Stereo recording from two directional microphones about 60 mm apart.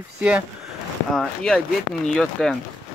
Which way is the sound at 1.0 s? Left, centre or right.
Centre.